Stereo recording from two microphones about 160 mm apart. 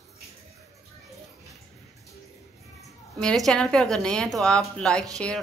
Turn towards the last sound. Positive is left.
turn(degrees=5)  # may be behind; listen again after turning